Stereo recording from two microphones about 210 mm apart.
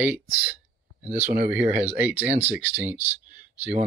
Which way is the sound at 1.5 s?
5° right (ahead or behind).